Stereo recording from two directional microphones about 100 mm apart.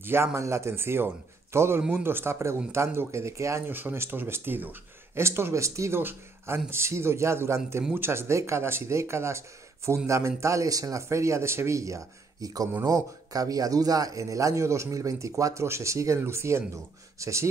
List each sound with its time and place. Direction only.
0.0 s speech: 25° right (ahead or behind)
1.8 s speech: 10° right (ahead or behind)
2.0 s a man's voice: 25° right (ahead or behind)